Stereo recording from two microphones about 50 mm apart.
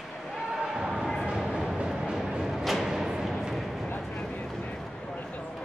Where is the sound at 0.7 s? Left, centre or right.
Centre.